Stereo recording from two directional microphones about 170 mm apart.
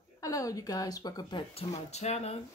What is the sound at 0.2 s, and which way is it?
Speech, 20° left (ahead or behind).